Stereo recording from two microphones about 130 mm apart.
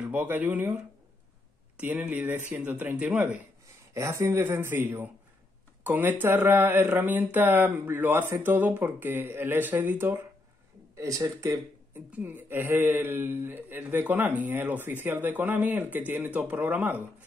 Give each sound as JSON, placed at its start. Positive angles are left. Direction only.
{"t": 0.0, "sound": "speech", "side_deg": -15}
{"t": 3.9, "sound": "speech", "side_deg": -20}